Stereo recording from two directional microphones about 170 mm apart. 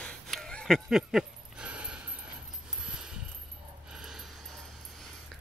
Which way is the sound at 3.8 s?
5° right (ahead or behind).